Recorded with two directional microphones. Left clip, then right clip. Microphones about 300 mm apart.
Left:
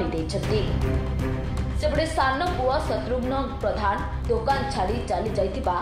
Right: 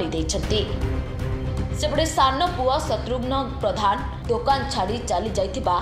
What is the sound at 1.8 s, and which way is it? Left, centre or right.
A woman's voice, centre.